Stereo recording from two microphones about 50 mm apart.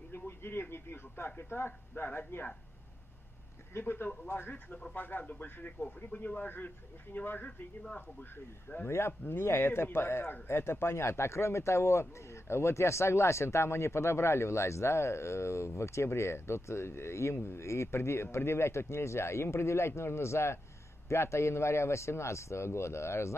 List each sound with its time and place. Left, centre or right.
0.1 s speech: left
3.7 s speech: left
5.3 s speech: left
8.2 s speech: left
8.8 s a man's voice: left